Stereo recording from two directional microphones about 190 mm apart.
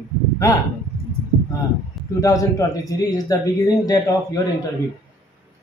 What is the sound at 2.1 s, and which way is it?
A man's voice, 15° left (ahead or behind).